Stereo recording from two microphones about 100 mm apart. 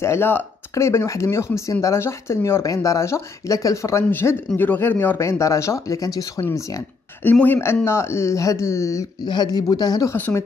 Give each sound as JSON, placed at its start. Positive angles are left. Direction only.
{"t": 0.0, "sound": "speech", "side_deg": 25}
{"t": 7.2, "sound": "speech", "side_deg": 20}
{"t": 9.2, "sound": "speech", "side_deg": 45}